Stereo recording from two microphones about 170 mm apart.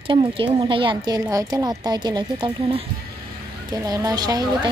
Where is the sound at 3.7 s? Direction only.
20° right (ahead or behind).